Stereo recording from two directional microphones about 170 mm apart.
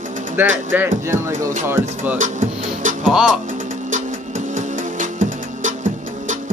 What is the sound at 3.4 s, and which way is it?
Music, 50° right (ahead or behind).